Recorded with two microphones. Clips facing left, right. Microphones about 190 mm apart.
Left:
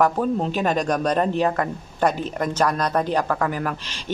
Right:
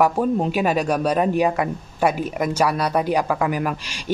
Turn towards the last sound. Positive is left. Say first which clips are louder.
# right 3 dB
turn(degrees=-10)  # may be behind; listen again after turning